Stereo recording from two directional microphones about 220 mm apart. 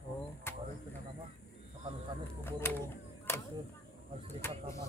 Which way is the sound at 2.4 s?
10° left (ahead or behind).